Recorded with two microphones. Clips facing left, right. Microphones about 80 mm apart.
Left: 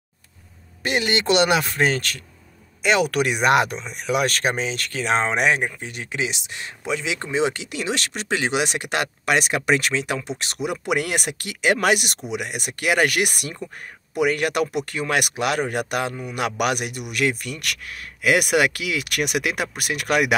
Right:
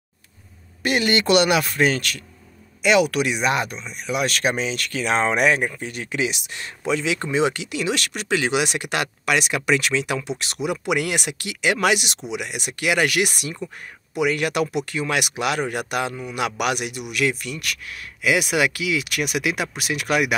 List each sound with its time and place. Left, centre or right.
0.8 s speech: left
3.8 s speech: left
4.3 s speech: left